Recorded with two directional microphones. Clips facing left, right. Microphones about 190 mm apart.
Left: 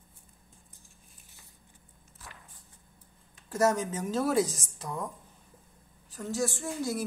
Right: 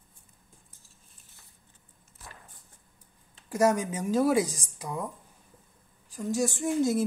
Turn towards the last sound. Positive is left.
turn(degrees=-20)  # may be behind; listen again after turning